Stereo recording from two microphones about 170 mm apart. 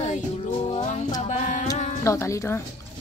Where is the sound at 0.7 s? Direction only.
35° left (ahead or behind).